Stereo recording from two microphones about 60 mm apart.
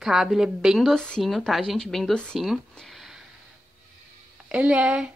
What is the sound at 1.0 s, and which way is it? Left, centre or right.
Speech, centre.